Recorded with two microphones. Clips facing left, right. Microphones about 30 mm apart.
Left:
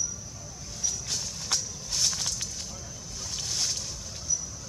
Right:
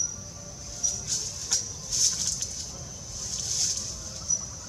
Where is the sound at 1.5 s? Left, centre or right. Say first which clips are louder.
Even; left.